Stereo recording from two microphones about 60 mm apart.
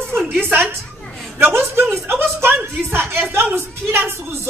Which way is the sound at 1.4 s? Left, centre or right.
Right.